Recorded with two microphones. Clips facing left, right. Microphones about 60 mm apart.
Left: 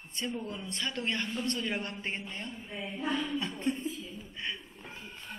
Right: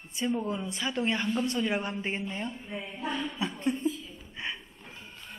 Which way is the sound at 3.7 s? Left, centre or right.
Centre.